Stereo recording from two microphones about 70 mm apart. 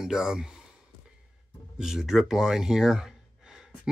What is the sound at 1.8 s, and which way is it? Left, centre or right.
Speech, centre.